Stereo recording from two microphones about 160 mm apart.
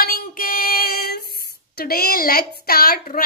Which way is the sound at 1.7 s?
75° left (ahead or behind).